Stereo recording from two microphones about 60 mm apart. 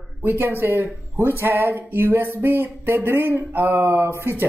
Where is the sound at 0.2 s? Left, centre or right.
Right.